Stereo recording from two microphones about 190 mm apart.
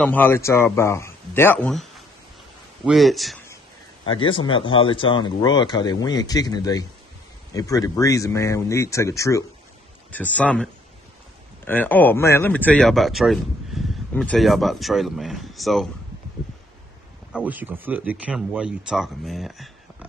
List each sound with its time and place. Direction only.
0.0 s speech: 10° left (ahead or behind)
4.0 s speech: 25° left (ahead or behind); by 15.9 s centre (ahead or behind)
17.3 s speech: 10° right (ahead or behind)